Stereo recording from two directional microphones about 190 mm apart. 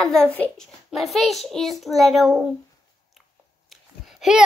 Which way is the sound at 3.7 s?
Centre (ahead or behind).